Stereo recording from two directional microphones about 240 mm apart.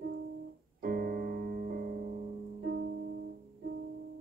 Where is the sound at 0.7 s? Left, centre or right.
Right.